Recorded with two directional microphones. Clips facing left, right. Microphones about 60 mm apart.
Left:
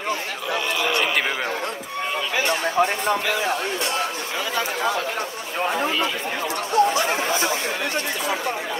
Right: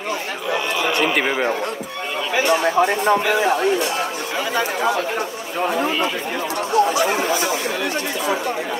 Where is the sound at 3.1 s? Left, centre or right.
Right.